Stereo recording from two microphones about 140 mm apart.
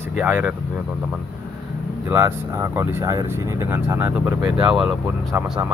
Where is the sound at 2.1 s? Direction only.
20° right (ahead or behind).